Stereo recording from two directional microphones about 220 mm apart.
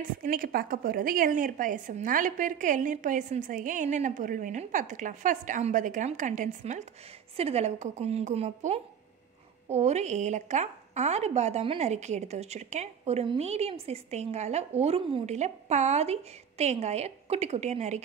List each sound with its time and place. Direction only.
0.0 s a woman's voice: 40° right (ahead or behind)